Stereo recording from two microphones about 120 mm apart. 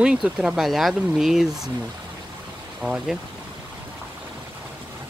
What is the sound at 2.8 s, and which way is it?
Speech, 5° right (ahead or behind).